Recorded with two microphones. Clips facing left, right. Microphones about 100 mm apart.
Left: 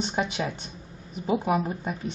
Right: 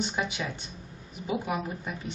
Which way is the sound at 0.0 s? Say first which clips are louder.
Left 3 dB; 35° left (ahead or behind).